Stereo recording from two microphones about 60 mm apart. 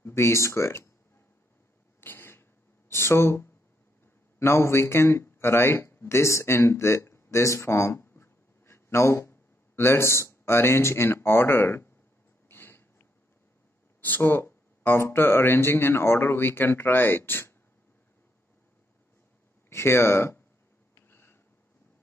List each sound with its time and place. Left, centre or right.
0.0 s speech: left
2.0 s throat clearing: left
2.9 s speech: left
8.0 s a sound: left
14.0 s speech: left
19.7 s speech: left
20.9 s a sound: left